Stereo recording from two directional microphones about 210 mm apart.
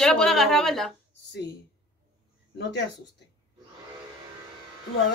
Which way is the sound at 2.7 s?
55° left (ahead or behind).